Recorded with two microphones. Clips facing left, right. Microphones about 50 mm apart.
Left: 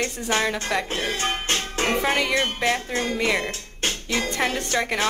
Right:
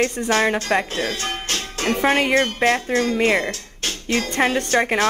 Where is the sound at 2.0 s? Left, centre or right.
Right.